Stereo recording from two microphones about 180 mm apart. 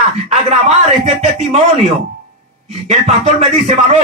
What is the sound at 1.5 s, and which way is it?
Speech, 35° right (ahead or behind).